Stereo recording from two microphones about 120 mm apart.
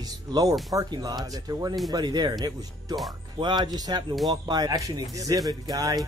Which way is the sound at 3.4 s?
40° right (ahead or behind).